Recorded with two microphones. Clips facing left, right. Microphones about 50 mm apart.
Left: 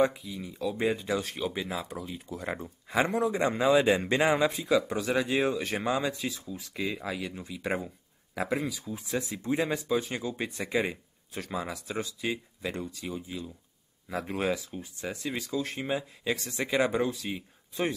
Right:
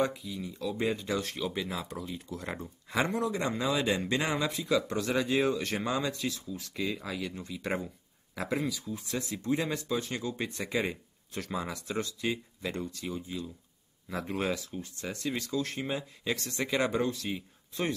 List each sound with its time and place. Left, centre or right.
0.0 s speech: left
10.5 s speech: centre